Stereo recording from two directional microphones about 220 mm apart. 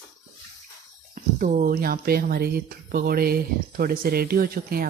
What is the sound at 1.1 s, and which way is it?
A woman's voice, 35° right (ahead or behind).